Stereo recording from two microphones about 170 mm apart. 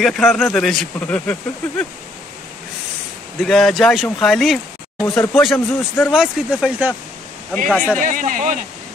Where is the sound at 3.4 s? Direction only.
Centre (ahead or behind).